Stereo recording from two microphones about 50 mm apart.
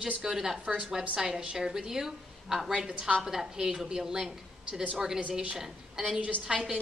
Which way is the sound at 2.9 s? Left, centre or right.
Right.